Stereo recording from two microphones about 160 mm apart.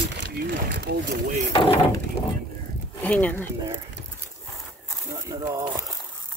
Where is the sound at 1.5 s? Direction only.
35° left (ahead or behind).